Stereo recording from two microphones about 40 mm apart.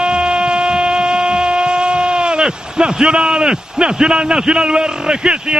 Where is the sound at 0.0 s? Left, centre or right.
Right.